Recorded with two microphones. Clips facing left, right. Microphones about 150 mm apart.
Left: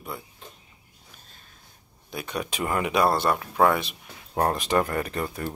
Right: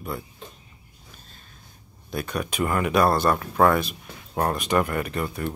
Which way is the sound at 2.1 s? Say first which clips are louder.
Right 3 dB; 20° left (ahead or behind).